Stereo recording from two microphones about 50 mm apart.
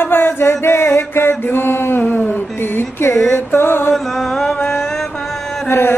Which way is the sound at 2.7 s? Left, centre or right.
Left.